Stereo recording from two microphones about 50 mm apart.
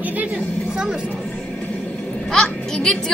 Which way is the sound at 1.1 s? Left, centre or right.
Left.